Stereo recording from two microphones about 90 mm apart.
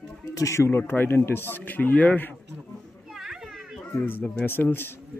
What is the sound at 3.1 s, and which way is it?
Children playing, 5° right (ahead or behind).